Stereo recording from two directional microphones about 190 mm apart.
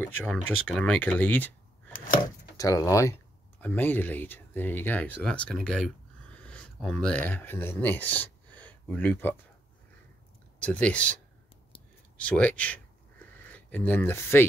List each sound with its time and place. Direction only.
0.0 s speech: 5° left (ahead or behind)
2.5 s speech: 20° left (ahead or behind)
10.6 s speech: 5° left (ahead or behind)
12.2 s speech: 5° left (ahead or behind)
13.2 s a sound: 10° left (ahead or behind)